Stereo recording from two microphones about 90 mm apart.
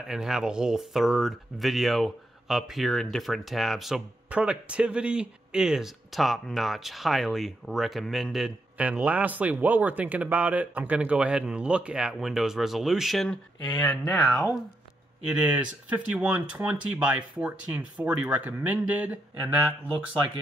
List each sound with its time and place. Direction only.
0.1 s speech: 5° right (ahead or behind)
4.3 s speech: 15° right (ahead or behind)
8.7 s speech: 15° right (ahead or behind); by 13.4 s centre (ahead or behind)
13.6 s speech: 55° left (ahead or behind)
14.1 s speech: centre (ahead or behind)
15.2 s speech: 10° right (ahead or behind)